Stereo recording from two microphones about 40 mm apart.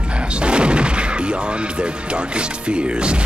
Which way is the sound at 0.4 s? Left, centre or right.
Right.